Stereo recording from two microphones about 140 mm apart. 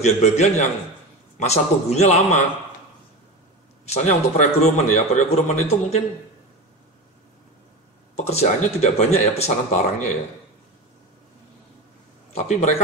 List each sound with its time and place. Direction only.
0.0 s a man's voice: 55° left (ahead or behind)
3.8 s a man's voice: 55° left (ahead or behind)
8.2 s a man's voice: 50° left (ahead or behind)
12.3 s a man's voice: 50° left (ahead or behind)